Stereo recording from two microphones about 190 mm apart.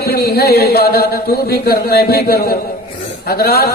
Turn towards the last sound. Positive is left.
turn(degrees=55)  # may be behind; listen again after turning